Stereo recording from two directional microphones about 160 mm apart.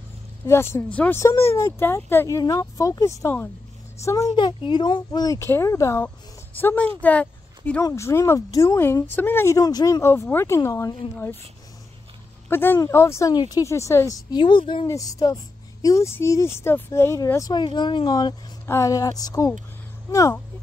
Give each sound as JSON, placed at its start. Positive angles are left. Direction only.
{"t": 0.4, "sound": "a woman's voice", "side_deg": 20}
{"t": 12.4, "sound": "a woman's voice", "side_deg": 15}
{"t": 14.9, "sound": "a woman's voice", "side_deg": 20}